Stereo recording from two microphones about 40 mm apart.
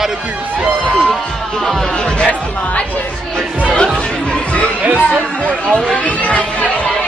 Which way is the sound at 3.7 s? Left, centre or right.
Left.